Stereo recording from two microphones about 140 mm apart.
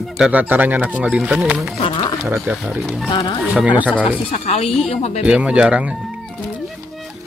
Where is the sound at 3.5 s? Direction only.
10° right (ahead or behind).